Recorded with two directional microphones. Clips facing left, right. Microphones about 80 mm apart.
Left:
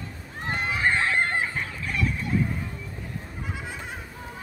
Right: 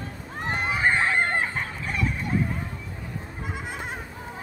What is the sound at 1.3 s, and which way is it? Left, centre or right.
Chicken, right.